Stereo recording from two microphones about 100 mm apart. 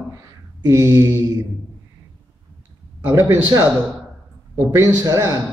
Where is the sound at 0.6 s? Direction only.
35° right (ahead or behind).